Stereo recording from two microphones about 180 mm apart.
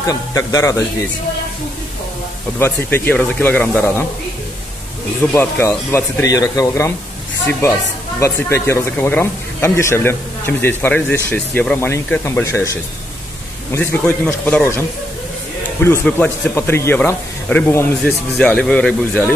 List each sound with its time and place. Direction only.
0.0 s speech: 20° left (ahead or behind)
2.6 s speech: 10° left (ahead or behind)
5.2 s speech: 10° left (ahead or behind)
8.2 s speech: 15° left (ahead or behind)